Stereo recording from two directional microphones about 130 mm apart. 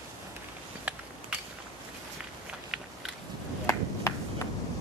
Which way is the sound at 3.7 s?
25° left (ahead or behind).